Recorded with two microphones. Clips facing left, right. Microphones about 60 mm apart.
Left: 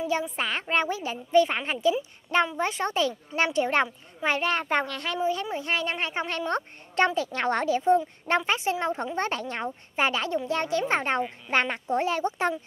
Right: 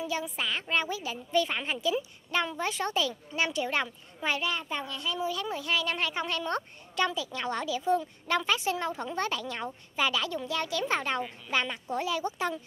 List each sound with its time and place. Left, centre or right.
0.0 s speech: left
4.4 s speech: left
5.2 s speech: left
7.2 s speech: left